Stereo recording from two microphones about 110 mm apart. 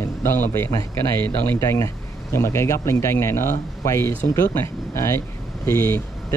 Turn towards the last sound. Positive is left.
turn(degrees=25)  # may be behind; listen again after turning